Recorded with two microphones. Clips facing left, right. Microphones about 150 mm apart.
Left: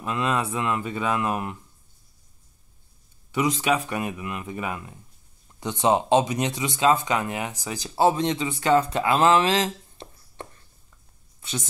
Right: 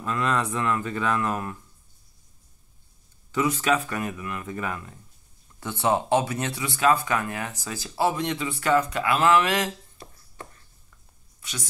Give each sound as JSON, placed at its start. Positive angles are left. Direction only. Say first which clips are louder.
{"t": 0.0, "sound": "speech", "louder": "even", "side_deg": 20}
{"t": 3.3, "sound": "speech", "louder": "even", "side_deg": 20}